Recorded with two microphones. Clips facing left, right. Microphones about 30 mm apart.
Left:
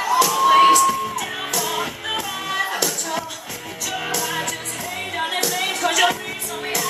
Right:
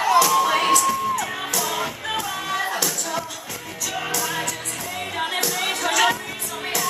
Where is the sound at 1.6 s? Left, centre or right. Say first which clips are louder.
Left 1 dB; centre.